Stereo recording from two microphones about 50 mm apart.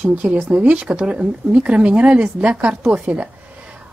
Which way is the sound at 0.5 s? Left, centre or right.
Right.